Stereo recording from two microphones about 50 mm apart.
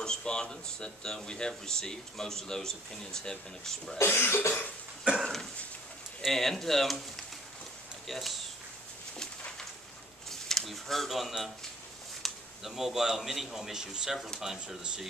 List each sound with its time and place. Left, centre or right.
0.0 s speech: centre
4.0 s cough: left
5.2 s a sound: centre
6.2 s speech: centre
8.1 s speech: centre
10.5 s a man's voice: centre